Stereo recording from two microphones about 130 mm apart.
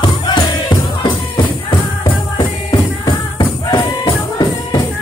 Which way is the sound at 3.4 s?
35° left (ahead or behind).